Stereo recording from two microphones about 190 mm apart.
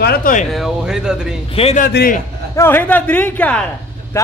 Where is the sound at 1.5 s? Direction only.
30° left (ahead or behind).